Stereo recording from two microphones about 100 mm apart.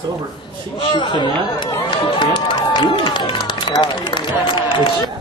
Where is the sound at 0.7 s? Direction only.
55° left (ahead or behind).